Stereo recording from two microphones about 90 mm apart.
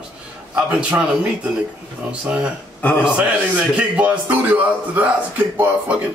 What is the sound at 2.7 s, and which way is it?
Speech, 20° left (ahead or behind).